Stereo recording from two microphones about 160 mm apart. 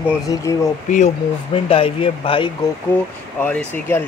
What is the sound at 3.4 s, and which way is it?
Speech, 15° left (ahead or behind).